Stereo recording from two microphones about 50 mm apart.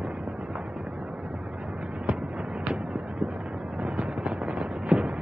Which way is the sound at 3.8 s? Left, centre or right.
Right.